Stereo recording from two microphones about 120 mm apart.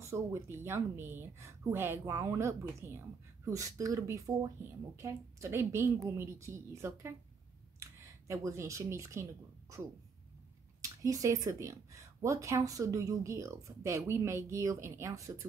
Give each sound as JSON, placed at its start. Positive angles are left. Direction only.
{"t": 0.0, "sound": "speech", "side_deg": -25}